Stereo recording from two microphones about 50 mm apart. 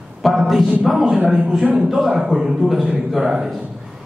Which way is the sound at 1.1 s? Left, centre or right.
Centre.